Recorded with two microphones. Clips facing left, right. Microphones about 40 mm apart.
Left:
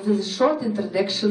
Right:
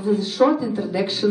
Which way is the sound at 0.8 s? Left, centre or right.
Centre.